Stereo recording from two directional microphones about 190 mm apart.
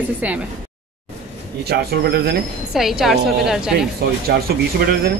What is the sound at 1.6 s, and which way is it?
Speech, 55° right (ahead or behind).